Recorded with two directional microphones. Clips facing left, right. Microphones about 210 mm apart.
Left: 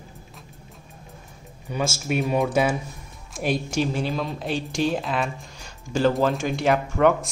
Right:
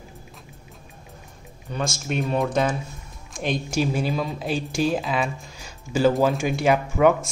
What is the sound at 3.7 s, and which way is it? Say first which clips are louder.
Speech: right 1 dB; 5° right (ahead or behind).